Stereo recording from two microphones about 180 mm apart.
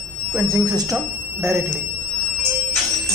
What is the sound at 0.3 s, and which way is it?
Speech, 10° right (ahead or behind).